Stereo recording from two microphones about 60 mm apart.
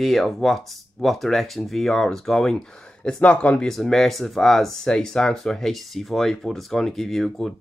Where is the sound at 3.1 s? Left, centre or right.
Centre.